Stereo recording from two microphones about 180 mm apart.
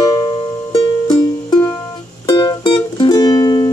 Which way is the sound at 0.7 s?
30° left (ahead or behind).